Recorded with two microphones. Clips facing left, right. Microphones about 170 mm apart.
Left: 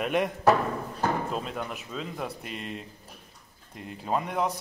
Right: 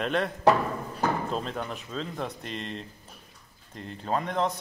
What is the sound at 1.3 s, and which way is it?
Speech, 5° left (ahead or behind).